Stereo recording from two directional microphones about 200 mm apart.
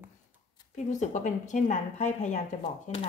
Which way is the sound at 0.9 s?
35° left (ahead or behind).